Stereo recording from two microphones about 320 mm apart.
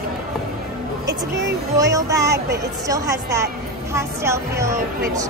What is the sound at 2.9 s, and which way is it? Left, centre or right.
A woman's voice, centre.